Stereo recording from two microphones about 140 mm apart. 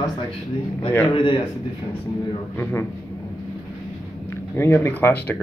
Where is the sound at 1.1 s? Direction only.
35° left (ahead or behind).